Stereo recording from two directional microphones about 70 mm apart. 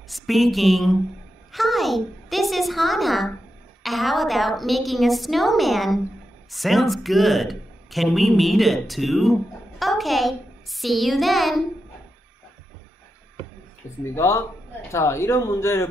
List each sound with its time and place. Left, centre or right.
0.1 s speech: centre
14.0 s speech: left